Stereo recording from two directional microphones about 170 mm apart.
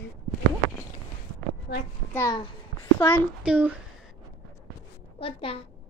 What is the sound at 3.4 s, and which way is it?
Speech, 5° right (ahead or behind).